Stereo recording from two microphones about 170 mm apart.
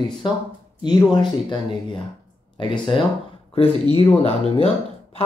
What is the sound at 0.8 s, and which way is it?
Speech, 25° left (ahead or behind).